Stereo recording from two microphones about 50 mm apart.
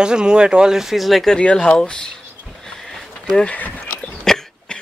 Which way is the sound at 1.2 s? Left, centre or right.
Centre.